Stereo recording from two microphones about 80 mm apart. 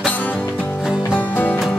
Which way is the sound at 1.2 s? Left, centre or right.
Left.